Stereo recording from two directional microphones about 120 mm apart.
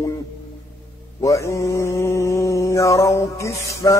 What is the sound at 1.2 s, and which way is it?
Mantra, 25° left (ahead or behind).